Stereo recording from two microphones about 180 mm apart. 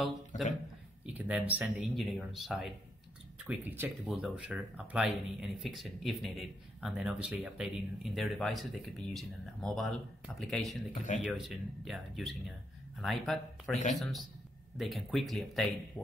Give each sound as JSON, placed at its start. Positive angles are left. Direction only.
{"t": 0.3, "sound": "a sound", "side_deg": 45}
{"t": 1.0, "sound": "speech", "side_deg": -5}
{"t": 3.4, "sound": "speech", "side_deg": -10}
{"t": 14.8, "sound": "speech", "side_deg": 0}